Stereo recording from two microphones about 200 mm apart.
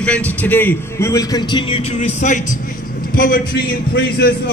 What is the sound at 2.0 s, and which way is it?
A man's voice, 40° left (ahead or behind).